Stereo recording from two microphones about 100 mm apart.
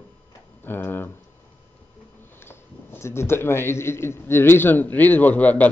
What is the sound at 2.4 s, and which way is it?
Speech, 25° left (ahead or behind).